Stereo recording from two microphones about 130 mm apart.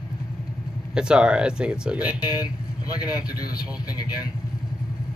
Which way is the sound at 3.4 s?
30° left (ahead or behind).